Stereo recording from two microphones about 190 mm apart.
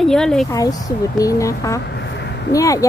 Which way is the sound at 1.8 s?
65° left (ahead or behind).